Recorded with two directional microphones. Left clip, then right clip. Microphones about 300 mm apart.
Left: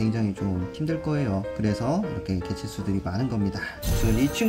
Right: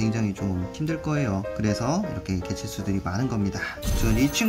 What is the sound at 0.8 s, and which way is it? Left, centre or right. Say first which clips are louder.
Speech: even; centre.